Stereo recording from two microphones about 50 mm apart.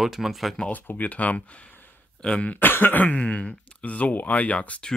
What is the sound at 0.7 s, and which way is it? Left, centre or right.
Speech, left.